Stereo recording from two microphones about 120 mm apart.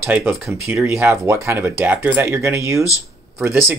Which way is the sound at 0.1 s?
15° right (ahead or behind).